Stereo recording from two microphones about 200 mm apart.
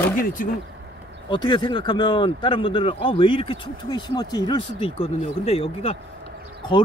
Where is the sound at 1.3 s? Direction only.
25° left (ahead or behind).